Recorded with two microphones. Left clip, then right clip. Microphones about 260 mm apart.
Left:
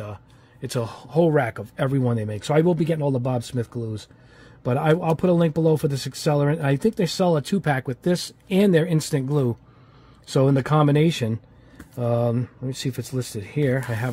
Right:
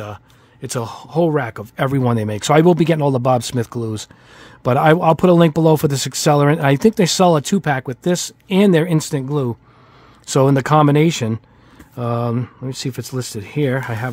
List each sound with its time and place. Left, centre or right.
0.0 s speech: right
10.2 s speech: right